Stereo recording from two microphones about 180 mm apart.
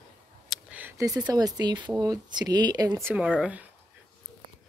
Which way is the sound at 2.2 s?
25° right (ahead or behind).